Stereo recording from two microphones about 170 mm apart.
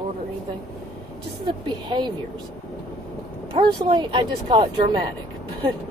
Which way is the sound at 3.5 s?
30° right (ahead or behind).